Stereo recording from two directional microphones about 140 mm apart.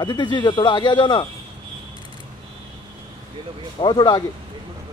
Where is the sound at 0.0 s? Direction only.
30° left (ahead or behind).